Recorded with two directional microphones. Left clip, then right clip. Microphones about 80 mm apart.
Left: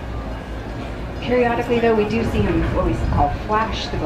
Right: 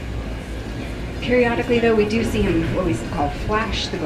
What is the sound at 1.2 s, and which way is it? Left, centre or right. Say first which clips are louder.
Speech: even; right.